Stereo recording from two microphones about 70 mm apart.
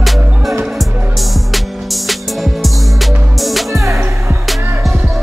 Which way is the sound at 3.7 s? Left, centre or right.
Right.